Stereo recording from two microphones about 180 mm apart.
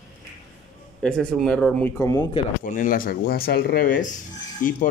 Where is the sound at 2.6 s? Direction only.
45° left (ahead or behind).